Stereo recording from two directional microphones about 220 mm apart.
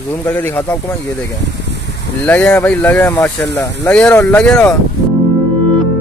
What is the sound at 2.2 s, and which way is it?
Speech, 5° left (ahead or behind).